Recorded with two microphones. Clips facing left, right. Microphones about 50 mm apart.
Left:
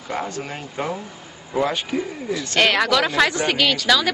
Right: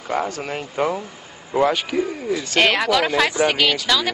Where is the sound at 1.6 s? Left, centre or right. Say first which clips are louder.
Right 3 dB; right.